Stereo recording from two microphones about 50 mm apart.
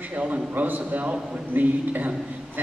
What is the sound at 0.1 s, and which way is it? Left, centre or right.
A man's voice, right.